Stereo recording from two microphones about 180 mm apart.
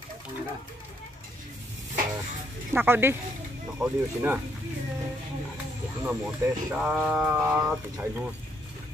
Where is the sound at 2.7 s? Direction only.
10° right (ahead or behind).